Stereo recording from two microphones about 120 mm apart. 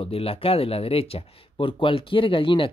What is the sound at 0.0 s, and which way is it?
Speech, 55° left (ahead or behind).